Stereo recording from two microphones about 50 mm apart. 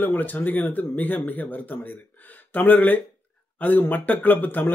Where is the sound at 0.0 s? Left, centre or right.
Left.